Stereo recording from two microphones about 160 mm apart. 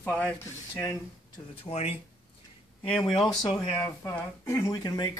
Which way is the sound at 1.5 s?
40° left (ahead or behind).